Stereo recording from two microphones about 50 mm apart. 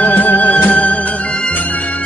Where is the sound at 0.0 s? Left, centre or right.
Left.